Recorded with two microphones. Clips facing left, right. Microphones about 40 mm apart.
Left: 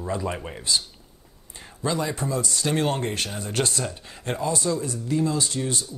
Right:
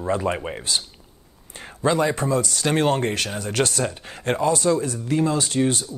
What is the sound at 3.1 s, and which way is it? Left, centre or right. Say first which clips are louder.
Speech: right 4 dB; right.